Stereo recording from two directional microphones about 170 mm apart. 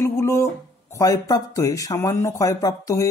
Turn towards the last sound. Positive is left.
turn(degrees=20)  # may be behind; listen again after turning